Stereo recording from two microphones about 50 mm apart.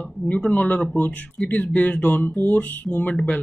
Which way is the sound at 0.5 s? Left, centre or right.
Left.